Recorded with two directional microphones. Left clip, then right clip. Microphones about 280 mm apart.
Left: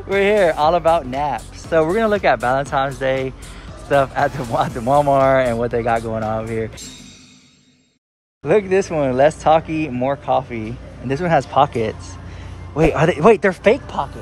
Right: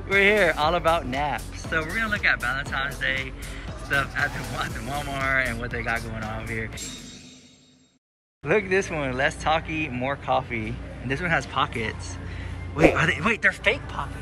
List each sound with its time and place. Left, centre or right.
0.1 s speech: centre
8.5 s speech: centre